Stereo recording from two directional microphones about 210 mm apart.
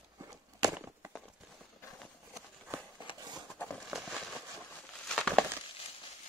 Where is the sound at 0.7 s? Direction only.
10° right (ahead or behind).